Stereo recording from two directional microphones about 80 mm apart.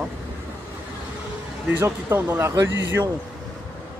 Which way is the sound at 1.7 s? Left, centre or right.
Right.